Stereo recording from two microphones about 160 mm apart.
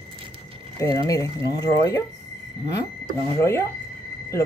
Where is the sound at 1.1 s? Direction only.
20° left (ahead or behind).